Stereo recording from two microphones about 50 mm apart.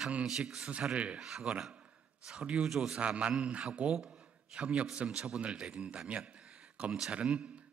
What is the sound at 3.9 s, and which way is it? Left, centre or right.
A man's voice, centre.